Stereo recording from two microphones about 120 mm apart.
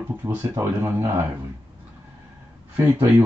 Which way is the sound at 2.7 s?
20° right (ahead or behind).